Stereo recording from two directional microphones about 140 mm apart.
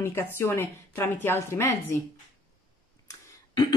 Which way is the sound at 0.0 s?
15° left (ahead or behind).